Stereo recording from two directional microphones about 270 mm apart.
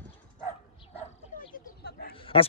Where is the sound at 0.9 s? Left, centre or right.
Left.